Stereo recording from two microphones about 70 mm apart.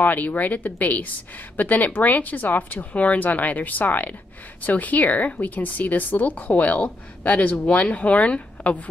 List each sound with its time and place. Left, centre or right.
0.0 s a woman's voice: left